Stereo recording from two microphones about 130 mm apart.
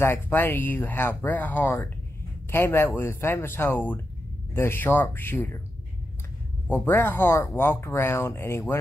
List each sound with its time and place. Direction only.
0.0 s speech: 15° left (ahead or behind)
6.7 s speech: 15° left (ahead or behind)